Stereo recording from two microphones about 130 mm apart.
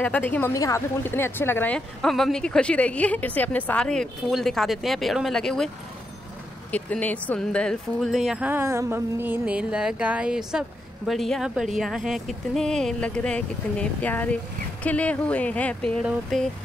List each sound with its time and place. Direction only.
0.0 s speech: 10° left (ahead or behind)
2.0 s a woman's voice: 5° left (ahead or behind)
6.7 s a woman's voice: 10° left (ahead or behind)
8.5 s music: 20° right (ahead or behind)
11.1 s a woman's voice: centre (ahead or behind)